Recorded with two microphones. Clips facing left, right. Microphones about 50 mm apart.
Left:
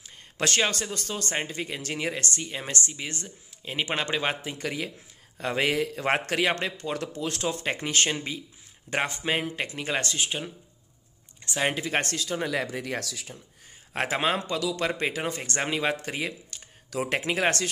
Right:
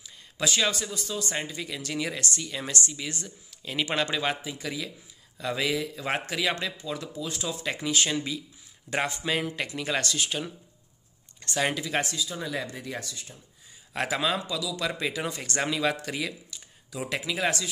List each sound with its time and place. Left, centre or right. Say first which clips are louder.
0.0 s a sound: left 1 dB; left
0.7 s speech: even; left
4.5 s a man's voice: left 2 dB; left
6.8 s speech: left 3 dB; left
7.4 s speech: left 1 dB; left
8.1 s speech: right 1 dB; left
11.5 s speech: even; left
11.8 s speech: left 1 dB; left
13.9 s a man's voice: left 1 dB; left
17.2 s a man's voice: left 1 dB; left